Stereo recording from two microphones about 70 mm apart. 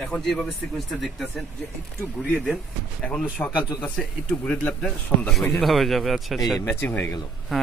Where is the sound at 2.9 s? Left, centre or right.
Centre.